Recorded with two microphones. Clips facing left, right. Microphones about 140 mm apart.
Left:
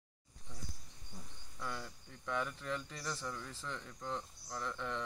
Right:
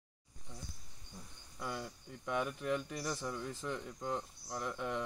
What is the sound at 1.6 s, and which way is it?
Speech, 15° right (ahead or behind).